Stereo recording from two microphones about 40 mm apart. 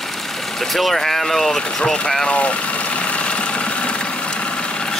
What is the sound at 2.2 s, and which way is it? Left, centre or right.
Engine, left.